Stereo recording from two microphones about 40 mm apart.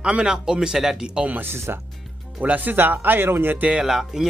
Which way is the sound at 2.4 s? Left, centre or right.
Right.